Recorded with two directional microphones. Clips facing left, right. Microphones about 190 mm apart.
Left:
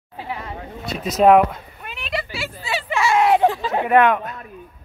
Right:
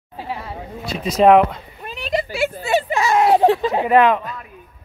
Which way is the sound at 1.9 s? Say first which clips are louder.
Right 5 dB; 40° right (ahead or behind).